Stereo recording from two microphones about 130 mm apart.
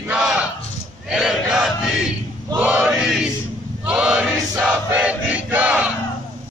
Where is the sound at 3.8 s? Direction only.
10° right (ahead or behind).